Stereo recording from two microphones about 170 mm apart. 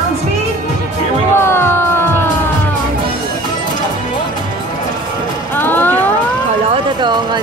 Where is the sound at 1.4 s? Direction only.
15° left (ahead or behind).